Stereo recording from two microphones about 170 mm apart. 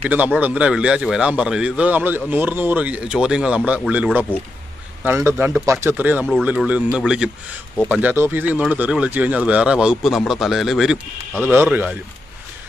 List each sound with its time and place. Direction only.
0.1 s a man's voice: 10° right (ahead or behind)
11.5 s a man's voice: 10° right (ahead or behind)